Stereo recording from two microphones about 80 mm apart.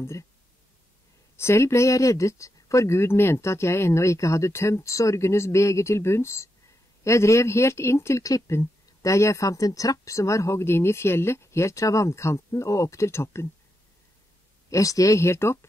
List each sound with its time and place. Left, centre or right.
1.3 s speech: left
14.7 s speech: left